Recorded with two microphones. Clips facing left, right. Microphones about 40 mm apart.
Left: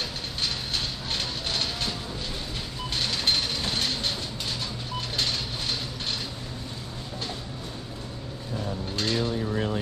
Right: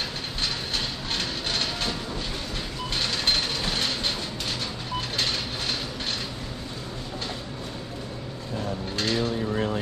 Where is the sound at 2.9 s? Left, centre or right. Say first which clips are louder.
Right 1 dB; centre.